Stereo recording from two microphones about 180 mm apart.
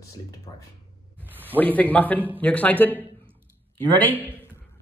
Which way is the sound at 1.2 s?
10° right (ahead or behind).